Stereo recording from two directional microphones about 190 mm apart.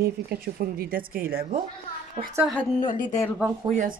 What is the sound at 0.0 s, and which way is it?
A woman's voice, 50° right (ahead or behind).